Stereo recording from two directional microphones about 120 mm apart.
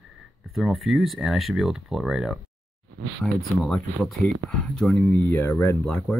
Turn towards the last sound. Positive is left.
turn(degrees=25)  # may be behind; listen again after turning